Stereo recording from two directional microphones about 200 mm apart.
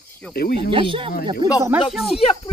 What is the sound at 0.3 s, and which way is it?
Speech, 50° left (ahead or behind).